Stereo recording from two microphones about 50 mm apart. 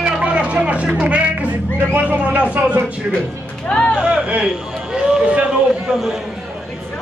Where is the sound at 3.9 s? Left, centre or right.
Centre.